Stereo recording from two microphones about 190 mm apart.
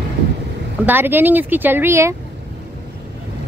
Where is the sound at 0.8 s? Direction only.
10° right (ahead or behind).